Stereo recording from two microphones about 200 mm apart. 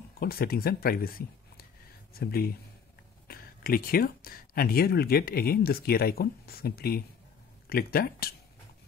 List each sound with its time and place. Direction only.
0.2 s speech: 50° left (ahead or behind)